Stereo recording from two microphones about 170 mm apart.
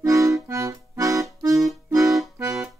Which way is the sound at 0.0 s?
20° right (ahead or behind).